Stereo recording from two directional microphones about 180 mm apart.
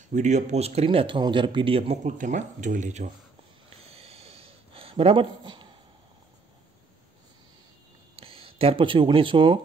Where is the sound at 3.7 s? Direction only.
35° right (ahead or behind).